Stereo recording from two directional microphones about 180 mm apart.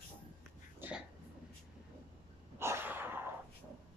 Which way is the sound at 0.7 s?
10° right (ahead or behind).